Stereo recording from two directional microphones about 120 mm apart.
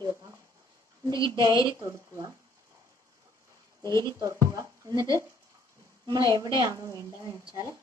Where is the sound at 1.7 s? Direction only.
25° right (ahead or behind).